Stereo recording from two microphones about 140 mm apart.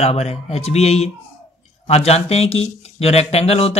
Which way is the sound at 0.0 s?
50° left (ahead or behind).